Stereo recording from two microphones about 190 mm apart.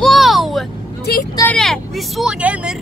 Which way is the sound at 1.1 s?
60° left (ahead or behind).